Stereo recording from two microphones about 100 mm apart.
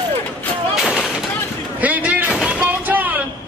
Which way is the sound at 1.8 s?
15° right (ahead or behind).